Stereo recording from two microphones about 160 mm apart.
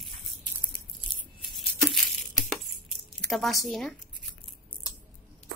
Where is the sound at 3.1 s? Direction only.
Centre (ahead or behind).